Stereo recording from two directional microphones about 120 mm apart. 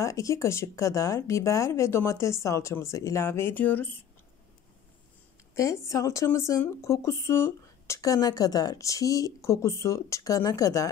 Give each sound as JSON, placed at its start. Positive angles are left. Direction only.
{"t": 0.0, "sound": "a woman's voice", "side_deg": 25}
{"t": 5.5, "sound": "a woman's voice", "side_deg": 25}